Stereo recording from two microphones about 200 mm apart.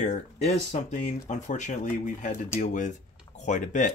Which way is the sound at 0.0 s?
35° left (ahead or behind).